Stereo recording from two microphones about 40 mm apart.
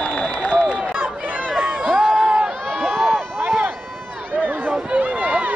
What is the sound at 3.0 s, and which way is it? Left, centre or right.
Run, right.